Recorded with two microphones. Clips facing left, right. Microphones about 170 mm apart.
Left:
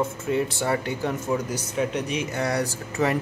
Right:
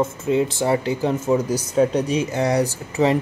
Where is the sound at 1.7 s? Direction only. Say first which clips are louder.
Right 8 dB; 35° right (ahead or behind).